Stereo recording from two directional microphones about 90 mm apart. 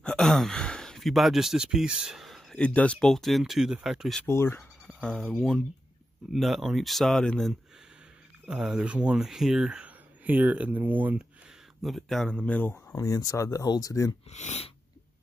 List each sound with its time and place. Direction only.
0.0 s speech: 5° left (ahead or behind)
2.5 s speech: 15° left (ahead or behind); by 4.2 s 5° right (ahead or behind)
4.3 s speech: 30° left (ahead or behind)
4.6 s a sound: 10° left (ahead or behind)
5.3 s speech: 5° left (ahead or behind)
8.5 s speech: 10° right (ahead or behind)
11.8 s speech: centre (ahead or behind); by 12.8 s 15° left (ahead or behind)
12.9 s speech: 40° left (ahead or behind)